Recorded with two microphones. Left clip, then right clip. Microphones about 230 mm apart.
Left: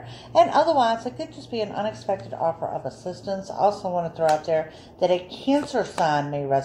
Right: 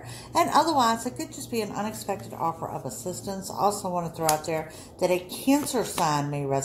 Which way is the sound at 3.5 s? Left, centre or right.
Right.